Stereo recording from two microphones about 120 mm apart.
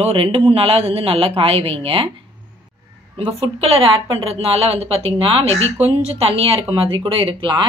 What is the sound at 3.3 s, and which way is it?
Speech, 55° right (ahead or behind).